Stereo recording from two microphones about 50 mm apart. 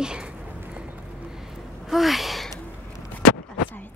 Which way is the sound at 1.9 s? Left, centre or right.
Centre.